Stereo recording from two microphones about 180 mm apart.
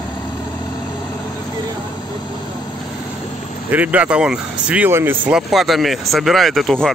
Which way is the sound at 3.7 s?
10° right (ahead or behind).